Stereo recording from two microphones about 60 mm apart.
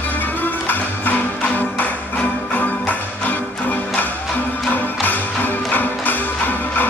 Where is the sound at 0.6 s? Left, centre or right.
Left.